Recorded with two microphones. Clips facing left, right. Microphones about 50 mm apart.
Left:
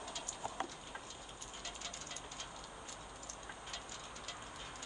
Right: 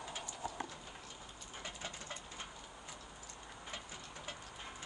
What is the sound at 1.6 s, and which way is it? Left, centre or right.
Mechanisms, centre.